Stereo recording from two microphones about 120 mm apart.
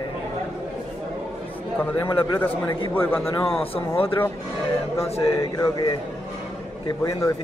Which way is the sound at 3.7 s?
50° left (ahead or behind).